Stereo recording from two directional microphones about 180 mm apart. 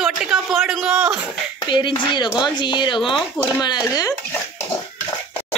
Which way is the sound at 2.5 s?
25° left (ahead or behind).